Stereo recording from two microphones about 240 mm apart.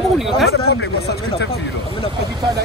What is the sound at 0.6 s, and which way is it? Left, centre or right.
Speech, left.